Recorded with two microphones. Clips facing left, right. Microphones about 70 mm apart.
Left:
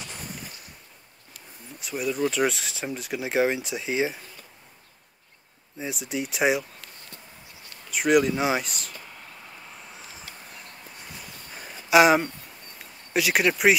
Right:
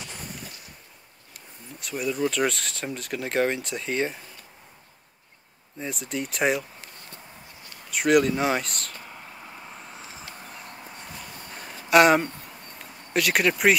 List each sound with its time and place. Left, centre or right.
1.8 s speech: centre
5.8 s speech: centre
7.9 s speech: centre
9.0 s a sound: centre
9.8 s vehicle: centre
11.9 s speech: centre